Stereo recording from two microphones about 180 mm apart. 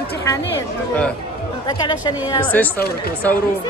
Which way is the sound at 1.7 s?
25° left (ahead or behind).